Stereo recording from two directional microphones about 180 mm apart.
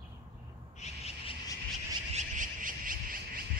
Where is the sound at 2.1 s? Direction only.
45° right (ahead or behind).